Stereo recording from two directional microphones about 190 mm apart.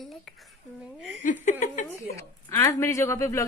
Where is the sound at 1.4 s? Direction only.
40° left (ahead or behind).